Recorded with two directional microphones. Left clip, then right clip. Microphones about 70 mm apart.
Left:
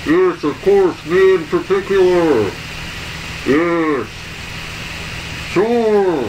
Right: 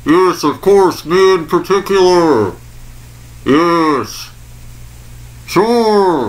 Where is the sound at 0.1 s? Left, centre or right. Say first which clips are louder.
Right 4 dB; right.